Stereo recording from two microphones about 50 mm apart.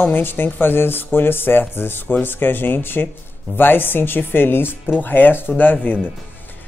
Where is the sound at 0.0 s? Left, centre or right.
Left.